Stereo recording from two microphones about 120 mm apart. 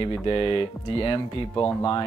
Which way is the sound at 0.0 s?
50° left (ahead or behind).